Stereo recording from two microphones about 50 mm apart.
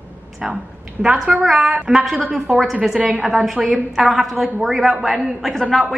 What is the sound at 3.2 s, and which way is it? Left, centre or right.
A woman's voice, centre.